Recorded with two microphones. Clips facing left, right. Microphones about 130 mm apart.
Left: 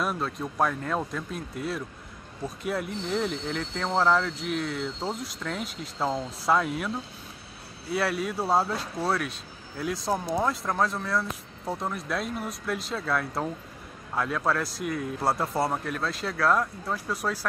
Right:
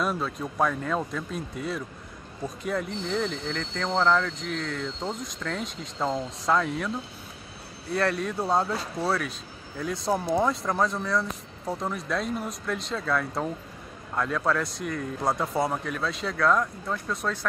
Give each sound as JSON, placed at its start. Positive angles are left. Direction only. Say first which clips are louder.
{"t": 0.0, "sound": "speech", "louder": "right 1 dB", "side_deg": 0}
{"t": 7.9, "sound": "speech", "louder": "right 1 dB", "side_deg": 5}